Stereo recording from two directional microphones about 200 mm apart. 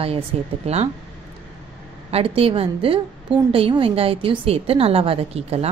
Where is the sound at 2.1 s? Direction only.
30° right (ahead or behind).